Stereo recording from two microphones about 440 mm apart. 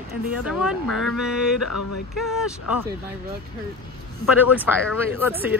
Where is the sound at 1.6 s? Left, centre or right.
Left.